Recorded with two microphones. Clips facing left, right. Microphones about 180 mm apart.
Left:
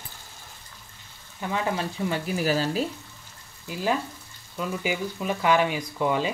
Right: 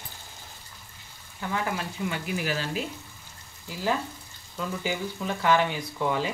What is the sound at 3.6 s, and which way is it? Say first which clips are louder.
Speech: left 2 dB; 20° left (ahead or behind).